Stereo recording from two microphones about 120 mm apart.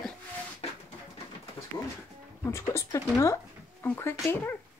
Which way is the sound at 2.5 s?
25° left (ahead or behind).